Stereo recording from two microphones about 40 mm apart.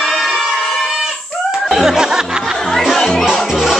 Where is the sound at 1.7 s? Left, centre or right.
Centre.